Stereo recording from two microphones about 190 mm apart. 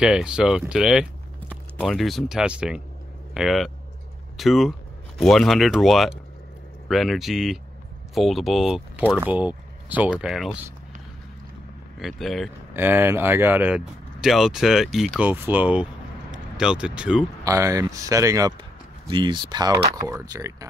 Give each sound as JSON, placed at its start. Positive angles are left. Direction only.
{"t": 0.0, "sound": "speech", "side_deg": -5}
{"t": 12.0, "sound": "speech", "side_deg": 0}
{"t": 12.7, "sound": "speech", "side_deg": -10}
{"t": 17.5, "sound": "speech", "side_deg": -15}